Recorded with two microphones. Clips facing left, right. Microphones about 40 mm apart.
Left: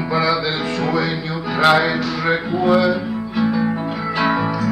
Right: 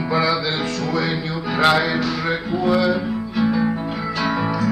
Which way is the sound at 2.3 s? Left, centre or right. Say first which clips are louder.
Left 5 dB; centre.